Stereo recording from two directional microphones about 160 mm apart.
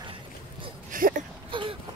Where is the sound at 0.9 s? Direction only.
60° right (ahead or behind).